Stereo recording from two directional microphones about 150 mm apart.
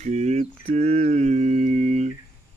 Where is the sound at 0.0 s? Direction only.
50° right (ahead or behind).